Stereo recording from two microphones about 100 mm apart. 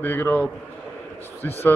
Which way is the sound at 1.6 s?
25° left (ahead or behind).